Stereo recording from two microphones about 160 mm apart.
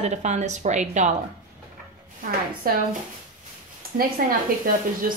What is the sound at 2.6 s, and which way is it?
Speech, 65° right (ahead or behind).